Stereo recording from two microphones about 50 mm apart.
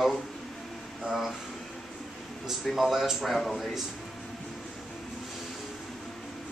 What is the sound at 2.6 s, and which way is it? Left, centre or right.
Speech, centre.